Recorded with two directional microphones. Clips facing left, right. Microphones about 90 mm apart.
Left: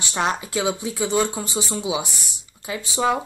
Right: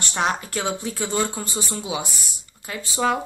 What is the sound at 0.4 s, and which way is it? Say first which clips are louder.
Speech: left 3 dB; 10° left (ahead or behind).